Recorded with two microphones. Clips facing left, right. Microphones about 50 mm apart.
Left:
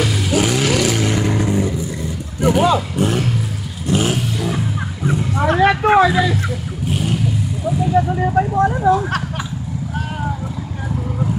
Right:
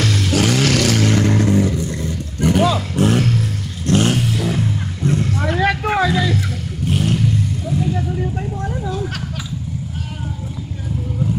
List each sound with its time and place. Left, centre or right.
0.0 s vehicle: centre
5.6 s vehicle: left
6.0 s vehicle: centre
8.1 s vehicle: left
8.8 s a sound: left